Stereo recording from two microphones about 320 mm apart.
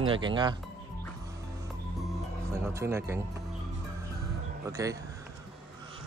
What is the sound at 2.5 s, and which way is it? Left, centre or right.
Speech, centre.